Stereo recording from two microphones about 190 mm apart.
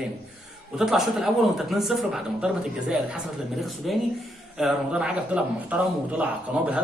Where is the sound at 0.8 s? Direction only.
Centre (ahead or behind).